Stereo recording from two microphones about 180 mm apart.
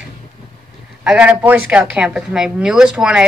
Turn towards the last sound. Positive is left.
turn(degrees=-5)  # may be behind; listen again after turning